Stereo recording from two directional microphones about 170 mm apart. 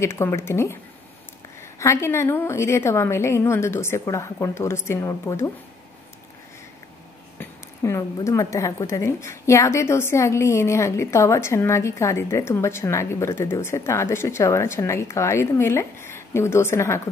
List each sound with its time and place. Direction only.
0.0 s a woman's voice: 15° left (ahead or behind)
1.8 s a woman's voice: 15° left (ahead or behind)
7.3 s a woman's voice: 15° left (ahead or behind)